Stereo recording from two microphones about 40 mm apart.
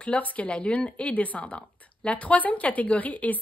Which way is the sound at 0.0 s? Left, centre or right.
Left.